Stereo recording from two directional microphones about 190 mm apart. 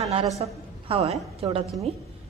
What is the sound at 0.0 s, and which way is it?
A woman's voice, 35° right (ahead or behind).